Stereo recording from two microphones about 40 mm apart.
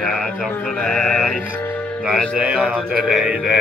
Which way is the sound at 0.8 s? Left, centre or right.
Centre.